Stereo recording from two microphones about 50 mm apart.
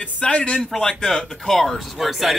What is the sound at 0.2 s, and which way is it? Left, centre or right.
Speech, left.